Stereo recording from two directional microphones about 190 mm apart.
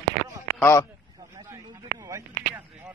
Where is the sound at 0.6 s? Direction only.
15° left (ahead or behind).